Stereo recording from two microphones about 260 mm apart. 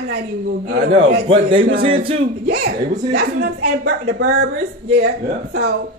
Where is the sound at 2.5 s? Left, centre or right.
Right.